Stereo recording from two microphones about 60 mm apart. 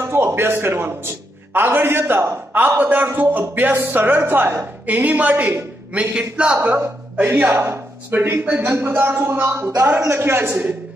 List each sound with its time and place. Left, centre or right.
0.1 s a man's voice: right
4.8 s a man's voice: right
7.5 s a man's voice: right
8.9 s a man's voice: right